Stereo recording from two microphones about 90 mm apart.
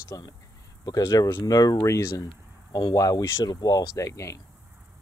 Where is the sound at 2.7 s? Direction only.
45° left (ahead or behind).